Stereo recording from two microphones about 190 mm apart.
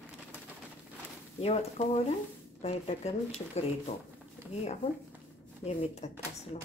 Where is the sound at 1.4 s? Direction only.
35° left (ahead or behind).